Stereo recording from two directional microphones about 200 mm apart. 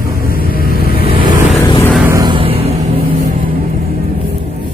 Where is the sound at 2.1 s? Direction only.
20° right (ahead or behind).